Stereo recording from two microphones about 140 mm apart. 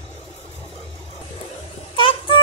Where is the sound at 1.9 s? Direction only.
35° left (ahead or behind).